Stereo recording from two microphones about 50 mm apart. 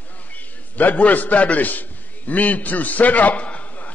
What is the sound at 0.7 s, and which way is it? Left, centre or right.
A man's voice, left.